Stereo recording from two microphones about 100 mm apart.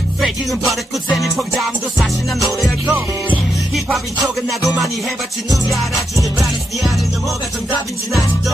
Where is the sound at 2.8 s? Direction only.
15° right (ahead or behind).